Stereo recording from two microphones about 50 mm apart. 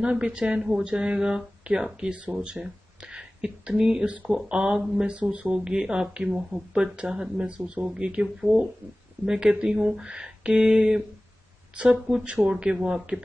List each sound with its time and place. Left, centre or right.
0.0 s speech: centre
2.5 s a sound: centre
4.3 s speech: centre
5.1 s speech: right
12.1 s speech: centre